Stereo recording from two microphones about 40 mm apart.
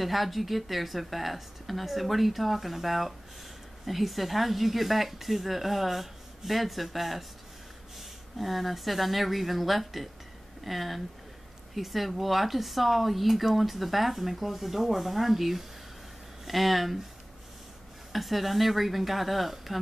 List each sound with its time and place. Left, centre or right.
0.0 s speech: centre
18.1 s speech: centre